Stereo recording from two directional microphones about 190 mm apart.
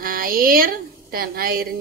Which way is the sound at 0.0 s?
50° right (ahead or behind).